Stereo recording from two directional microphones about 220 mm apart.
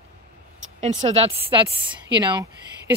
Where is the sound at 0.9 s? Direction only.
25° right (ahead or behind).